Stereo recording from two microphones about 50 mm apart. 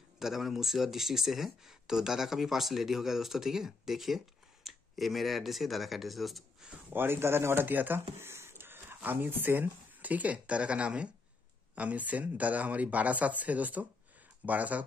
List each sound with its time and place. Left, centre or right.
0.2 s speech: centre
6.9 s speech: right